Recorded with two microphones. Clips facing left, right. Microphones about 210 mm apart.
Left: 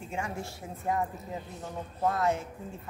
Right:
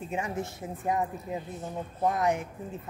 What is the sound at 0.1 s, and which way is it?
Speech, 20° right (ahead or behind).